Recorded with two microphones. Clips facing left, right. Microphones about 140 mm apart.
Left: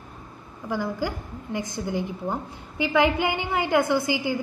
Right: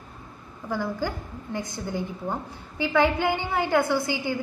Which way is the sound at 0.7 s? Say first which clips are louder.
Left 1 dB; 10° left (ahead or behind).